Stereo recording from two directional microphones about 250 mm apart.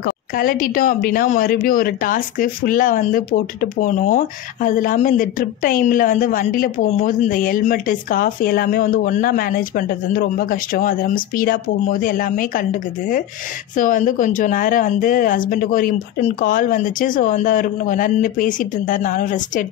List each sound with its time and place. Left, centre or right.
0.0 s speech: left
13.7 s speech: left